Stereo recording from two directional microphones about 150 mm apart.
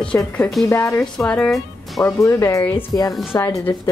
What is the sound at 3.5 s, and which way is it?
Speech, 10° left (ahead or behind).